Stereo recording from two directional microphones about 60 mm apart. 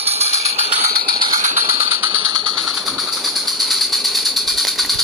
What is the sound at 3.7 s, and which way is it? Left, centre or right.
Engine, centre.